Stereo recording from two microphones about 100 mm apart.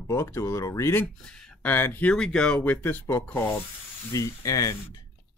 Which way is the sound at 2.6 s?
20° left (ahead or behind).